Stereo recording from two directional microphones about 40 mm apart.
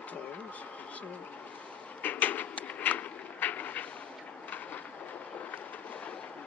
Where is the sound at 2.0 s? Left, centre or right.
Left.